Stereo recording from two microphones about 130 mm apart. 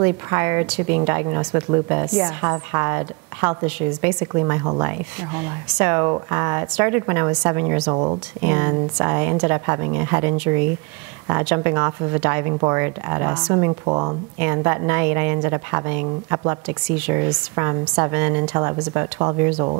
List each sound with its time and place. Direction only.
0.0 s a woman's voice: 20° right (ahead or behind)
4.3 s a woman's voice: 25° right (ahead or behind)
7.8 s speech: 35° right (ahead or behind)
8.4 s a woman's voice: 15° right (ahead or behind)
14.4 s a woman's voice: 20° right (ahead or behind)